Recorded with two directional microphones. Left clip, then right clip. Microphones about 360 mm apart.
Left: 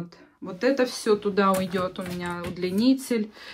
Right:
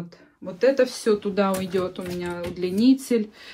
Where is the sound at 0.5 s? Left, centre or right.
Centre.